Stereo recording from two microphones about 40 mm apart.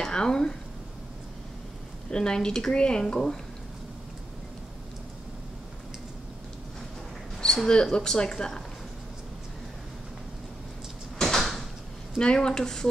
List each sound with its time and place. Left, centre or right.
0.0 s speech: centre
2.0 s a woman's voice: centre
7.3 s a woman's voice: centre
11.1 s door: centre
12.2 s speech: left